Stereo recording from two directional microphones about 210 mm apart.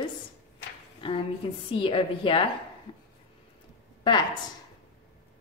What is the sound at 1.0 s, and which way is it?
A woman's voice, 25° left (ahead or behind).